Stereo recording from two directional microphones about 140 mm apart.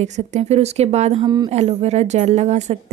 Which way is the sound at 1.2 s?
30° right (ahead or behind).